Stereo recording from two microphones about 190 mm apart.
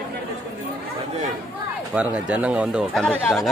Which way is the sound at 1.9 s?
5° right (ahead or behind).